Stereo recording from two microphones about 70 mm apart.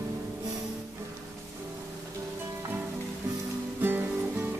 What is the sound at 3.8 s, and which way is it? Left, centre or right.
Music, right.